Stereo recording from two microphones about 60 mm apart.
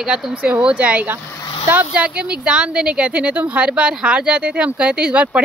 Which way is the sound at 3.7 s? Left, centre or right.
Centre.